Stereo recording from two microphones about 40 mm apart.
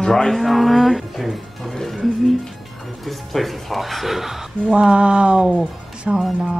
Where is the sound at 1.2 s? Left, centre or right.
Centre.